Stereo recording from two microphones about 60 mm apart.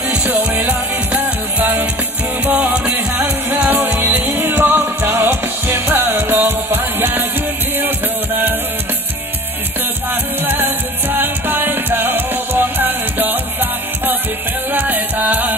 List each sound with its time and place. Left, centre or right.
0.6 s music: right
10.4 s music: right